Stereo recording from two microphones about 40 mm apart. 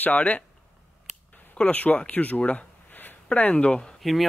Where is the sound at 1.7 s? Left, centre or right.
Left.